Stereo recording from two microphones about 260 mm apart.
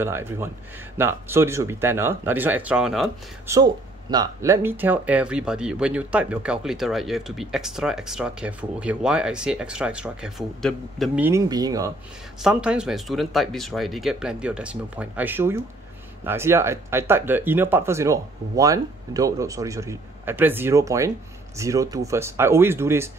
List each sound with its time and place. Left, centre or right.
0.0 s speech: centre
3.5 s speech: centre
12.4 s speech: centre